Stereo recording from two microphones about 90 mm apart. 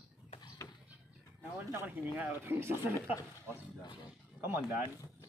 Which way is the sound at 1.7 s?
25° right (ahead or behind).